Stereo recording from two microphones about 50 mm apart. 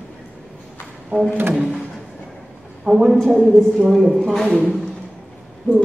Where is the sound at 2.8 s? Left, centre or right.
Centre.